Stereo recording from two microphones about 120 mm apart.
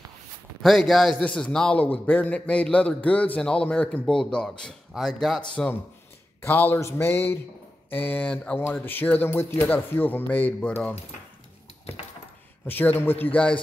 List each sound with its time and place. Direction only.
0.6 s a man's voice: centre (ahead or behind)
12.6 s a man's voice: 15° left (ahead or behind)